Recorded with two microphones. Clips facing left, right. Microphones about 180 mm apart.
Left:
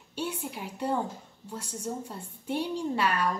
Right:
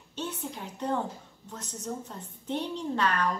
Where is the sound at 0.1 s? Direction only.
10° left (ahead or behind).